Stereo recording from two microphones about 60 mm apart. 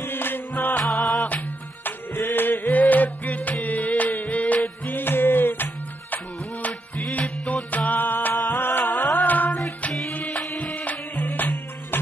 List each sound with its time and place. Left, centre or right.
0.1 s music: left
0.8 s music: centre
1.9 s music: left
4.8 s a sound: left
7.1 s music: left
8.9 s music: left
9.2 s music: left
11.3 s music: left